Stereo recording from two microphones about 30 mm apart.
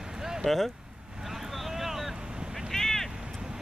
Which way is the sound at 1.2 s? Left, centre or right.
Centre.